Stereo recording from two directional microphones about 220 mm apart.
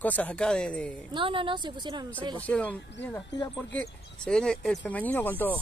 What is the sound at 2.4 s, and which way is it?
Speech, 5° left (ahead or behind).